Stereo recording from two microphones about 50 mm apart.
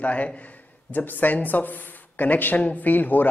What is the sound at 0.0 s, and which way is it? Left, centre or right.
A man's voice, left.